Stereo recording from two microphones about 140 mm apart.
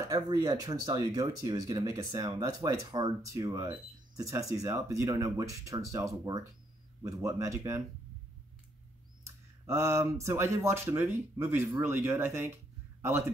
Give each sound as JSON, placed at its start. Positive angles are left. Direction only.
{"t": 0.0, "sound": "speech", "side_deg": -25}
{"t": 9.2, "sound": "speech", "side_deg": -20}